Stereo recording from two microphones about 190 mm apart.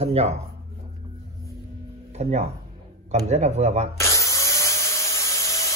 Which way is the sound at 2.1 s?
35° right (ahead or behind).